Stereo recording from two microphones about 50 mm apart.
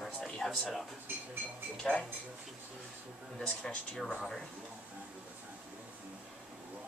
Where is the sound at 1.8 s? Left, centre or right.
Centre.